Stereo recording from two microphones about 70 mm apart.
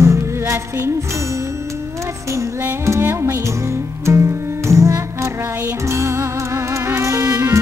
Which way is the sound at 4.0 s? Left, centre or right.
Right.